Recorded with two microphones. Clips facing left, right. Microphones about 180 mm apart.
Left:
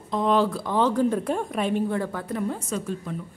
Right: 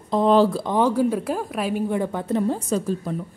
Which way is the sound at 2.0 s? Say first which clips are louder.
Right 5 dB; 20° right (ahead or behind).